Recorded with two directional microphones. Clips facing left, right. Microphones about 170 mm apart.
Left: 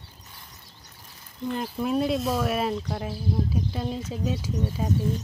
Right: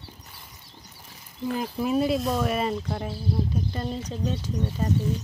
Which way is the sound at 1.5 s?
Centre (ahead or behind).